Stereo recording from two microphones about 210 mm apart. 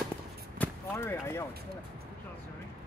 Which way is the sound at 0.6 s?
10° left (ahead or behind).